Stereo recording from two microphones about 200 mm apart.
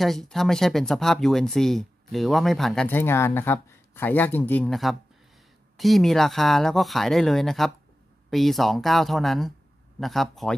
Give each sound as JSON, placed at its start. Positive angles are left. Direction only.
{"t": 0.0, "sound": "speech", "side_deg": 0}